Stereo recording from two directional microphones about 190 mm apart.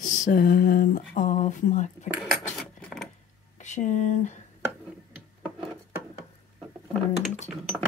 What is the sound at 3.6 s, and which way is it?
Speech, 40° left (ahead or behind).